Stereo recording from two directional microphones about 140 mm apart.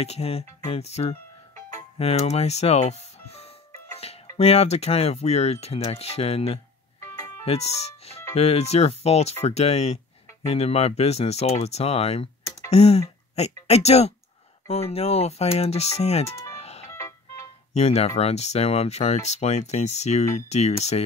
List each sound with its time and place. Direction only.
0.0 s speech: 45° left (ahead or behind)
1.5 s music: 25° left (ahead or behind)
2.0 s speech: 50° left (ahead or behind)
16.5 s ice cream truck: 50° left (ahead or behind)
16.9 s music: 20° left (ahead or behind)
17.7 s speech: 50° left (ahead or behind)